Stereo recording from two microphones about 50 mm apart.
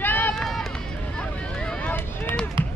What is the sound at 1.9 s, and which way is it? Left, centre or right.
Run, left.